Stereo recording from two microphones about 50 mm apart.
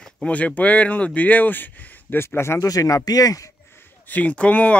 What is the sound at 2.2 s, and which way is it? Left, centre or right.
Speech, left.